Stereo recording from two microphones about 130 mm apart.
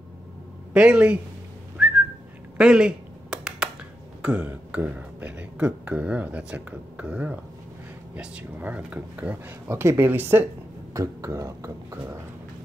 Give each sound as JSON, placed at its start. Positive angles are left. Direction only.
{"t": 0.7, "sound": "speech", "side_deg": -10}
{"t": 1.8, "sound": "whistling", "side_deg": -5}
{"t": 2.5, "sound": "a sound", "side_deg": -5}
{"t": 4.2, "sound": "speech", "side_deg": -10}